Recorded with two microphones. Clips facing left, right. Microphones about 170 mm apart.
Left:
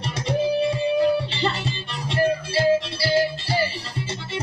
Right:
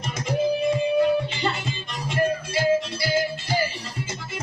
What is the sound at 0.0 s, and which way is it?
Music, 30° left (ahead or behind).